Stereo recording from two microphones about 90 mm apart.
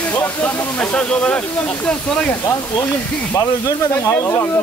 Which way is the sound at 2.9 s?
35° left (ahead or behind).